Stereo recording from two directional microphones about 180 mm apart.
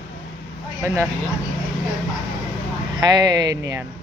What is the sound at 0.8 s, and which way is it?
Speech, 15° right (ahead or behind).